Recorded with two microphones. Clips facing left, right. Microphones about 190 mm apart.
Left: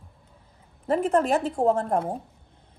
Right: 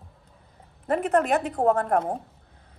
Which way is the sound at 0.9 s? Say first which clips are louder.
Even; 30° left (ahead or behind).